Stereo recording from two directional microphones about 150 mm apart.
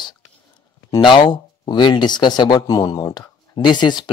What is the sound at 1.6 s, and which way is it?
Speech, 30° left (ahead or behind).